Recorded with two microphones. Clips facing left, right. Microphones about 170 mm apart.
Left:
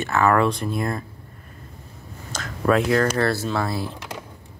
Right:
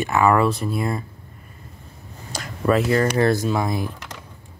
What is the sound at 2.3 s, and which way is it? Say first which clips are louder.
Speech: even; centre (ahead or behind).